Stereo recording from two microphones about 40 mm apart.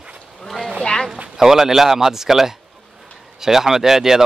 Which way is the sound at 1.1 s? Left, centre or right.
Centre.